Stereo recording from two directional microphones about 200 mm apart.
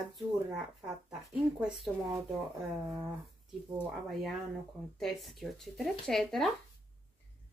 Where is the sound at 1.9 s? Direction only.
Centre (ahead or behind).